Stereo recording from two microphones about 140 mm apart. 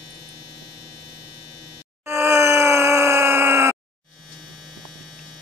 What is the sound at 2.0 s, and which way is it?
Wail, 20° right (ahead or behind).